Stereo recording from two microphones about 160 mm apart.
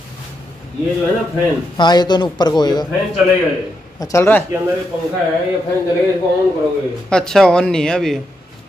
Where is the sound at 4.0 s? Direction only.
20° left (ahead or behind).